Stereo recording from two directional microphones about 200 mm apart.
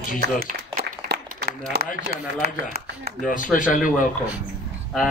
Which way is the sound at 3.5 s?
40° left (ahead or behind).